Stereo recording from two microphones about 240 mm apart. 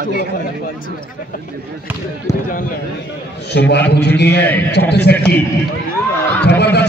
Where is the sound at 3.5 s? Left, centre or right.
Left.